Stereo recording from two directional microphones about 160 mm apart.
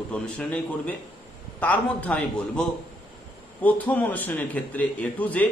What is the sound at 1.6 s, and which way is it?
Speech, 10° left (ahead or behind).